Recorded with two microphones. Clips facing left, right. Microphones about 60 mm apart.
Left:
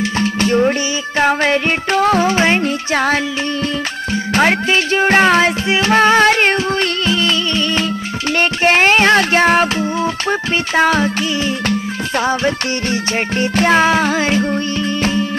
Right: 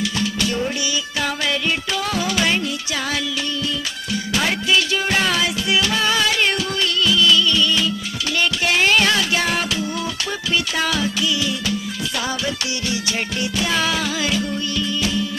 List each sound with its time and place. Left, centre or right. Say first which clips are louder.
0.0 s music: left 6 dB; left